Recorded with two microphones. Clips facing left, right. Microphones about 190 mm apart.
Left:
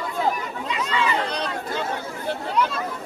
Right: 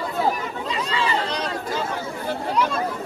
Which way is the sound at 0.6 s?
35° right (ahead or behind).